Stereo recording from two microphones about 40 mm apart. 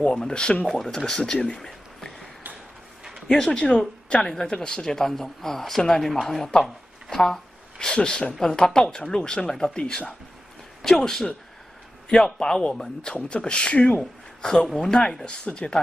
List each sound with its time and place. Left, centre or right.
0.0 s speech: left
0.7 s speech: centre
3.3 s speech: centre
13.1 s speech: left
14.4 s speech: centre